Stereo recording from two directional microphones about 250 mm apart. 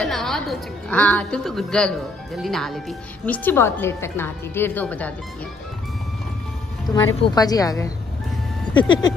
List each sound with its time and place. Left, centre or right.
0.0 s a woman's voice: centre
7.2 s speech: centre